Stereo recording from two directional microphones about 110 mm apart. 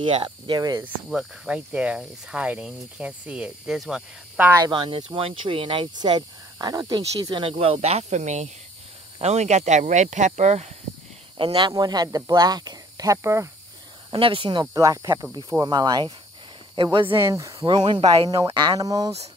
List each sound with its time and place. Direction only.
0.0 s cricket: 50° right (ahead or behind)
1.1 s speech: 5° right (ahead or behind)
4.6 s cricket: 45° right (ahead or behind)
5.1 s speech: 50° right (ahead or behind); by 7.2 s 30° right (ahead or behind)
7.2 s speech: 45° right (ahead or behind); by 10.7 s 85° right
11.3 s cricket: 45° right (ahead or behind)
11.7 s speech: 40° right (ahead or behind)
14.1 s cricket: 55° right (ahead or behind)
14.7 s speech: 30° right (ahead or behind)
16.7 s cricket: 50° right (ahead or behind)
17.2 s speech: 30° right (ahead or behind)
17.6 s cricket: 45° right (ahead or behind)
18.3 s speech: 35° right (ahead or behind)